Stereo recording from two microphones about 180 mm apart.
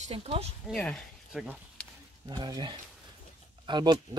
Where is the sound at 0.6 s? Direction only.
5° left (ahead or behind).